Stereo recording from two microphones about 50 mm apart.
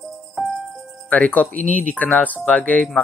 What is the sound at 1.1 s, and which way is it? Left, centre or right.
Speech, left.